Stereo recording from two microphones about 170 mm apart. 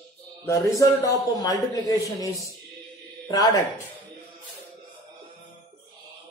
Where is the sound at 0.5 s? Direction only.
20° left (ahead or behind).